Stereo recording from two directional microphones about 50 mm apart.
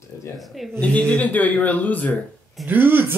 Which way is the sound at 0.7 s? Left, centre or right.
Left.